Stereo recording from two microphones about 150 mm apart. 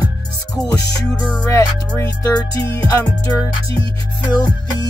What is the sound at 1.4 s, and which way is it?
Music, 20° left (ahead or behind).